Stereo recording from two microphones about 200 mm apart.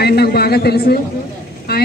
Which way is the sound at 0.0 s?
50° left (ahead or behind).